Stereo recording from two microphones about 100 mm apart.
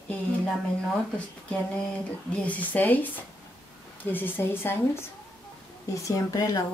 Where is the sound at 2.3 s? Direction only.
15° left (ahead or behind).